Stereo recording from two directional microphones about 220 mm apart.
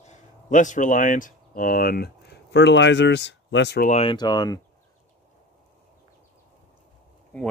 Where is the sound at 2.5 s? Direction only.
55° left (ahead or behind).